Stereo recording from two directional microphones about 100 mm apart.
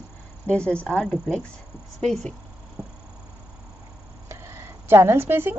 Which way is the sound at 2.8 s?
45° right (ahead or behind).